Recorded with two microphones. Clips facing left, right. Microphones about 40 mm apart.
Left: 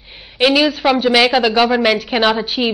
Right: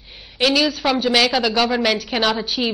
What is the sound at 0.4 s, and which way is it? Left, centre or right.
A woman's voice, left.